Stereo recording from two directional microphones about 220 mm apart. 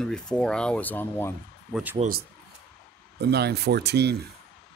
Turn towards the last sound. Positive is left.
turn(degrees=-50)  # may be behind; listen again after turning